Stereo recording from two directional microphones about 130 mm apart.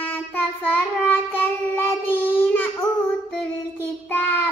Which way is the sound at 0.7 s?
15° left (ahead or behind).